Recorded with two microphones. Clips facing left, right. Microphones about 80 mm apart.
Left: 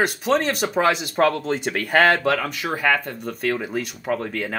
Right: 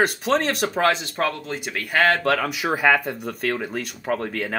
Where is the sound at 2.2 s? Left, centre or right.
Centre.